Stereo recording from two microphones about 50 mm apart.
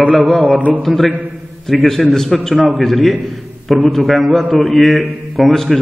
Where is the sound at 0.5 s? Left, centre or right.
Right.